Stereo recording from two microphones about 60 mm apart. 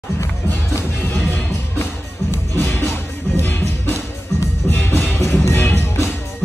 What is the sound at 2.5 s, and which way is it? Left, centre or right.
Music, left.